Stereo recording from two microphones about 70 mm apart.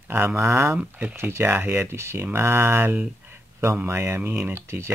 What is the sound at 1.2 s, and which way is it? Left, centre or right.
Speech, right.